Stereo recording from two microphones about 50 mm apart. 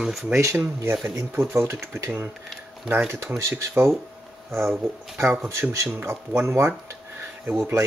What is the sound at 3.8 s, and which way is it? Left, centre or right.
Speech, right.